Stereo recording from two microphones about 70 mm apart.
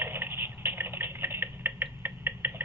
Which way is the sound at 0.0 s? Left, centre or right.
Right.